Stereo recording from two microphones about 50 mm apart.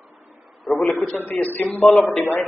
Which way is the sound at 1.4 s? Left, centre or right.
Left.